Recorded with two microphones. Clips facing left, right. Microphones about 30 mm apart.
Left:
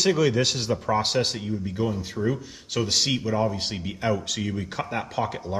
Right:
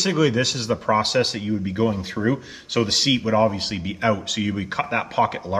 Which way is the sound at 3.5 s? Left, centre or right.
Right.